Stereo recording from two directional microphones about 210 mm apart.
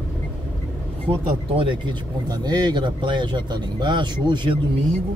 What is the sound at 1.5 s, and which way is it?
Speech, 25° right (ahead or behind).